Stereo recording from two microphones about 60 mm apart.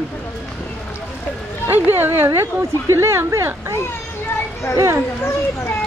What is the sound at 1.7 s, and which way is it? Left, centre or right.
Speech, right.